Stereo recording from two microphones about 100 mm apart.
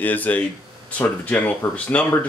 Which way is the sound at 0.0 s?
15° left (ahead or behind).